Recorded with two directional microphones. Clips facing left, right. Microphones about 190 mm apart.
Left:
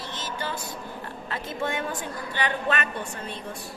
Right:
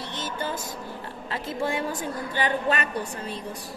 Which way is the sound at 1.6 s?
35° right (ahead or behind).